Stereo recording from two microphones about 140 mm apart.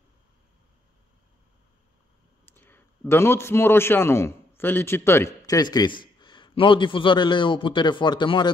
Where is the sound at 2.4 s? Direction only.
15° left (ahead or behind).